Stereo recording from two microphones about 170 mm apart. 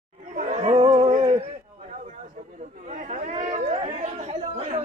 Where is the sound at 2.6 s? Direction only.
45° right (ahead or behind).